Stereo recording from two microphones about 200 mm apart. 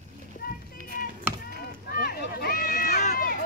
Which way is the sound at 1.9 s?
50° left (ahead or behind).